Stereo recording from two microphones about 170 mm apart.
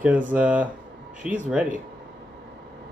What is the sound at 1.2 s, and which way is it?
Speech, 50° right (ahead or behind).